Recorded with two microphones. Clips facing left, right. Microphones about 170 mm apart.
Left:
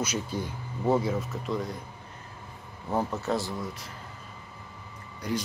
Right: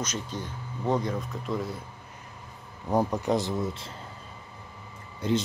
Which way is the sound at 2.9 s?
15° right (ahead or behind).